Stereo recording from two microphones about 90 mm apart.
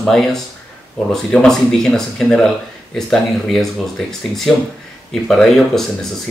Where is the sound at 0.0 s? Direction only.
5° left (ahead or behind).